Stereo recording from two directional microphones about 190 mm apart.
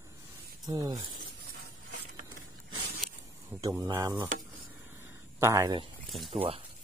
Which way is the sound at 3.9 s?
20° right (ahead or behind).